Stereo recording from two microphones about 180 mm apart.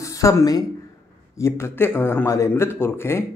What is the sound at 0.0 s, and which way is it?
A man's voice, 15° left (ahead or behind).